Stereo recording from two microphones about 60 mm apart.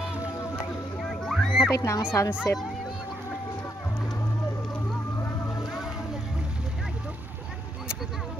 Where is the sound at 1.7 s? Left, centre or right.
Left.